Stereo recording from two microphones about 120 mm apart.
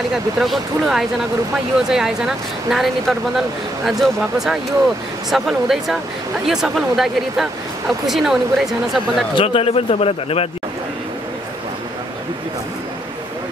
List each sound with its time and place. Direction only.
0.1 s speech: centre (ahead or behind)
9.3 s a man's voice: 50° left (ahead or behind)